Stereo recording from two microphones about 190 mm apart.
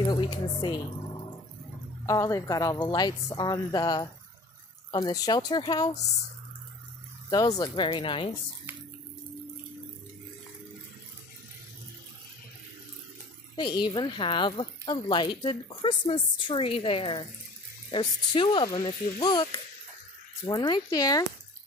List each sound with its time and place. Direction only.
0.0 s speech: 25° left (ahead or behind)
2.0 s a woman's voice: 15° left (ahead or behind)
7.5 s a woman's voice: 20° left (ahead or behind)
13.6 s a woman's voice: 25° left (ahead or behind)
20.4 s a woman's voice: 25° left (ahead or behind)